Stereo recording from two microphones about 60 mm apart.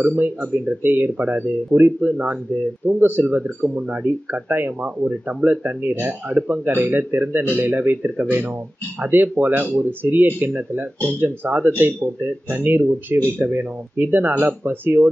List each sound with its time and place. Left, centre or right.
0.0 s speech: right